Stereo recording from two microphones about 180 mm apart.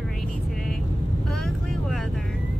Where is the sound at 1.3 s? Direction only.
Centre (ahead or behind).